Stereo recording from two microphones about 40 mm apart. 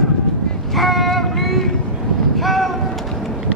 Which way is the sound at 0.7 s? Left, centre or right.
Centre.